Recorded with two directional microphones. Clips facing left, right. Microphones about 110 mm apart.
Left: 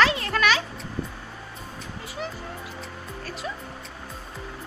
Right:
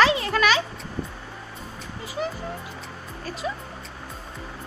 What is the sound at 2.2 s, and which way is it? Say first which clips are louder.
Speech: right 5 dB; 5° right (ahead or behind).